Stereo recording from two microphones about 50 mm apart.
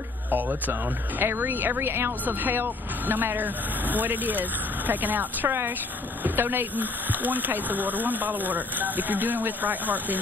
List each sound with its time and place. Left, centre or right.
0.3 s speech: right